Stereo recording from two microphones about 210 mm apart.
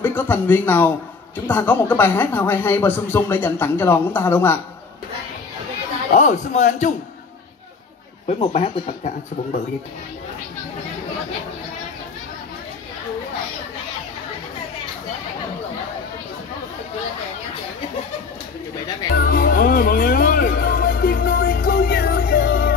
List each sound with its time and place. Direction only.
0.0 s a man's voice: 10° left (ahead or behind)
6.1 s a man's voice: 35° left (ahead or behind)
8.3 s speech: 30° left (ahead or behind)
19.1 s music: 45° left (ahead or behind)